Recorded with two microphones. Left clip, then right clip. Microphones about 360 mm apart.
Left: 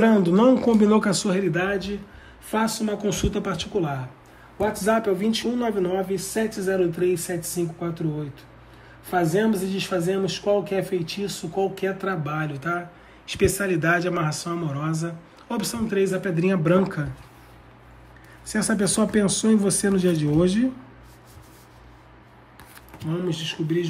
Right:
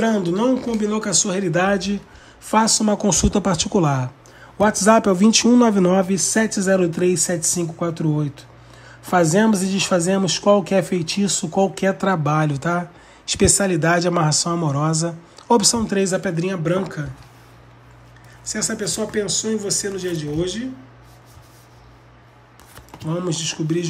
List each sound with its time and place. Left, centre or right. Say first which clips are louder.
0.0 s speech: left 1 dB; centre
18.5 s speech: even; centre
23.0 s speech: right 4 dB; centre